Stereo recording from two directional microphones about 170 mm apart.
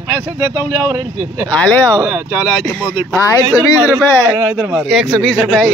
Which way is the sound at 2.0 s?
15° right (ahead or behind).